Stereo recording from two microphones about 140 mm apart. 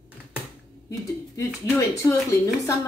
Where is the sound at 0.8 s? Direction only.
20° left (ahead or behind).